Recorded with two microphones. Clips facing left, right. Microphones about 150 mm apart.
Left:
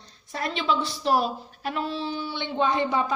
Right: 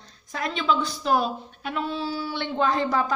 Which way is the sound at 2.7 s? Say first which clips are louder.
Right 1 dB; centre (ahead or behind).